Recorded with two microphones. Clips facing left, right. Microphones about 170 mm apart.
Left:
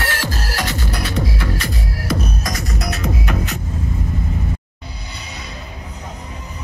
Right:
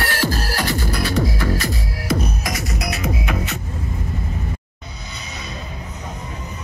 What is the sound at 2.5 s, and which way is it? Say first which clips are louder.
Music: even; 5° right (ahead or behind).